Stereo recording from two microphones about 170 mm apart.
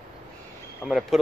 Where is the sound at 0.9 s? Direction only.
Centre (ahead or behind).